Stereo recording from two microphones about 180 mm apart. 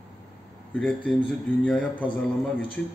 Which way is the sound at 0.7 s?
10° left (ahead or behind).